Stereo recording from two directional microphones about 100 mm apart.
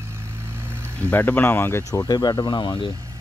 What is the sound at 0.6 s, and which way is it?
Vehicle, 25° right (ahead or behind).